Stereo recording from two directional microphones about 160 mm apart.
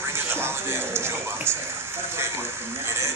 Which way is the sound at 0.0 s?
15° right (ahead or behind).